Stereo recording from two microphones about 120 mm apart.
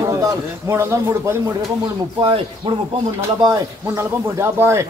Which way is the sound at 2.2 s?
45° right (ahead or behind).